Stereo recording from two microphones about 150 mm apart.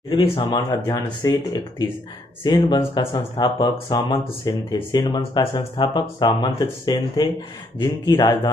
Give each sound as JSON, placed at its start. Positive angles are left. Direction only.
{"t": 0.1, "sound": "speech", "side_deg": 35}
{"t": 0.6, "sound": "speech", "side_deg": 20}